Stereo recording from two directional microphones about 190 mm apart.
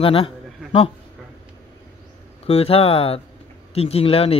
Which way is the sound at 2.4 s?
30° left (ahead or behind).